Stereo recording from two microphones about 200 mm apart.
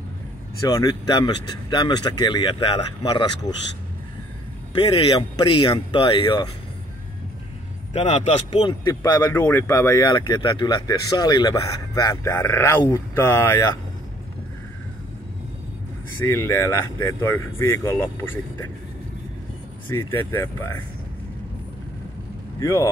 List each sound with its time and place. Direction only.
0.7 s speech: 20° left (ahead or behind)
4.7 s speech: 25° left (ahead or behind)
7.9 s speech: 30° left (ahead or behind); by 13.7 s 10° left (ahead or behind)
16.3 s speech: 15° left (ahead or behind)
19.9 s speech: 10° left (ahead or behind)
22.6 s speech: 15° left (ahead or behind)